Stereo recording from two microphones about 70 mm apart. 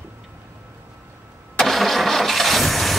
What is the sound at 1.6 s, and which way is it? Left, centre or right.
Vehicle, centre.